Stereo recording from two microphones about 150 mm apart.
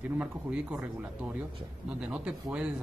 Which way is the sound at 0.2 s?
10° right (ahead or behind).